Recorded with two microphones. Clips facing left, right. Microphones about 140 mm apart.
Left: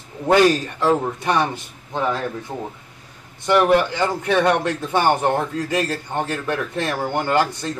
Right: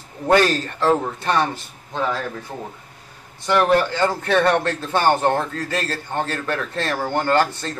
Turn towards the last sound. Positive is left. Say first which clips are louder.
# right 1 dB
turn(degrees=10)  # may be behind; listen again after turning